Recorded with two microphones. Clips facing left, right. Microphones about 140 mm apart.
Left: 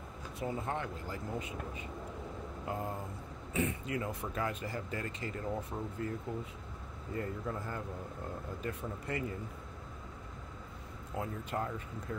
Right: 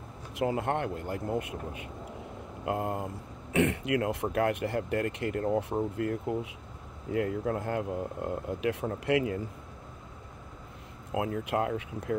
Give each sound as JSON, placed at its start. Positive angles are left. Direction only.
{"t": 0.4, "sound": "speech", "side_deg": -80}
{"t": 3.5, "sound": "speech", "side_deg": -80}
{"t": 11.1, "sound": "speech", "side_deg": -70}